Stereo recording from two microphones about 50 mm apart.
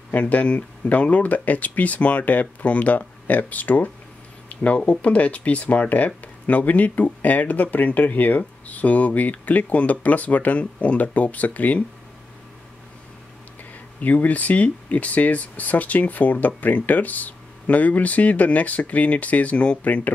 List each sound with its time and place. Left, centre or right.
0.1 s speech: left
14.0 s speech: left